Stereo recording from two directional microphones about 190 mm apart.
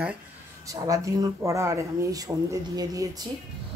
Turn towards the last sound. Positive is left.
turn(degrees=-20)  # may be behind; listen again after turning